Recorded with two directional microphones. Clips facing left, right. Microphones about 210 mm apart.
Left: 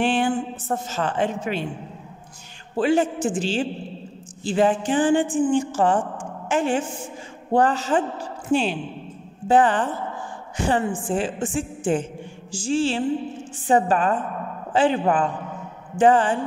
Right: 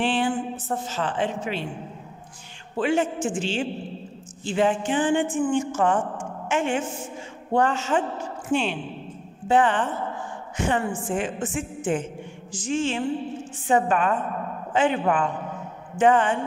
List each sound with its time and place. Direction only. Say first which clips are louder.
0.0 s speech: left 2 dB; 45° left (ahead or behind)
2.8 s a woman's voice: left 3 dB; 35° left (ahead or behind)